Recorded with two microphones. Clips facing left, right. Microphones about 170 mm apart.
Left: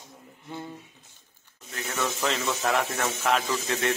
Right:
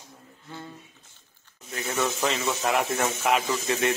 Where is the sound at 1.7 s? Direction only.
10° right (ahead or behind).